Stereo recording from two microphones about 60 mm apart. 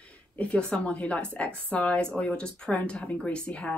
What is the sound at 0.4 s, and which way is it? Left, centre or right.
Speech, centre.